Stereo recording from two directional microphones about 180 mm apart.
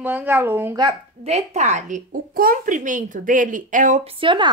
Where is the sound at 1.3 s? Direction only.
40° right (ahead or behind).